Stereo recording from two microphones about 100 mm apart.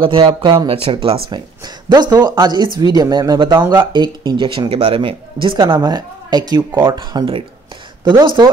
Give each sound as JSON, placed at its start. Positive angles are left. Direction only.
{"t": 0.0, "sound": "speech", "side_deg": -60}
{"t": 1.9, "sound": "speech", "side_deg": -45}
{"t": 5.8, "sound": "speech", "side_deg": -40}